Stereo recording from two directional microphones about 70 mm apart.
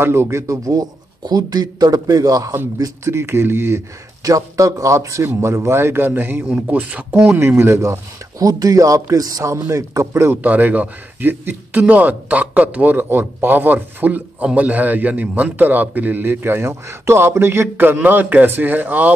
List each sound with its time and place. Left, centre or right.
0.0 s a man's voice: right
0.7 s a man's voice: right
3.1 s a man's voice: right
4.2 s a man's voice: right
7.3 s a man's voice: right
8.4 s a man's voice: right
10.3 s speech: right